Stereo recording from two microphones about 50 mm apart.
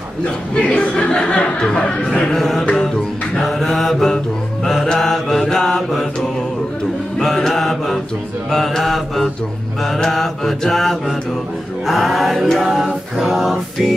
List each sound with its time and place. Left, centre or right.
0.6 s speech: left
3.4 s mantra: centre
7.2 s mantra: centre
12.6 s a capella: centre